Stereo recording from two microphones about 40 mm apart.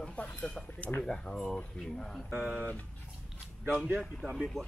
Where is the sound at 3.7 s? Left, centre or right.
Right.